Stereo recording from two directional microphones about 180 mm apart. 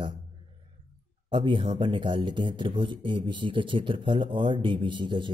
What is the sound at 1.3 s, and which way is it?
Speech, 30° right (ahead or behind).